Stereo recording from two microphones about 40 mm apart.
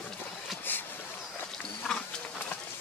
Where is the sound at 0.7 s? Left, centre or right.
Left.